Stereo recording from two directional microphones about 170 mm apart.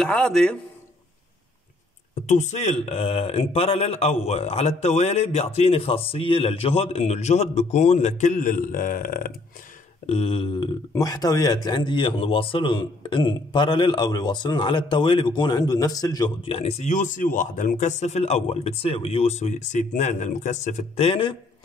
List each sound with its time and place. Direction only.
0.0 s a man's voice: 5° left (ahead or behind)
2.2 s speech: 45° left (ahead or behind)
10.0 s speech: 35° left (ahead or behind)
16.5 s speech: 40° left (ahead or behind)